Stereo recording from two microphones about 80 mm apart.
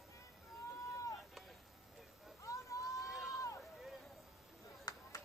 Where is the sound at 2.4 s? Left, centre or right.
Left.